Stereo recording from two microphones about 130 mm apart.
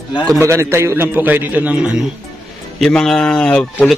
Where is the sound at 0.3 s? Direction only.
20° right (ahead or behind).